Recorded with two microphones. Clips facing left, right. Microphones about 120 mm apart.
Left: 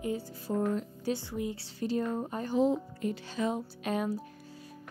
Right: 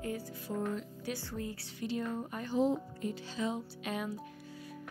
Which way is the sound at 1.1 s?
15° left (ahead or behind).